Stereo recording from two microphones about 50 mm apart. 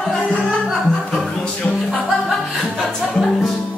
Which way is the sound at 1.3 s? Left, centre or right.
Centre.